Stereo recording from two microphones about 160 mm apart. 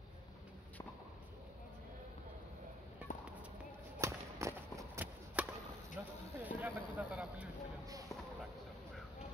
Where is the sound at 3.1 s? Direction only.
55° left (ahead or behind).